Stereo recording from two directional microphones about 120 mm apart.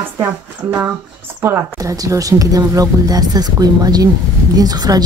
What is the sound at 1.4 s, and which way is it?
Speech, 25° right (ahead or behind).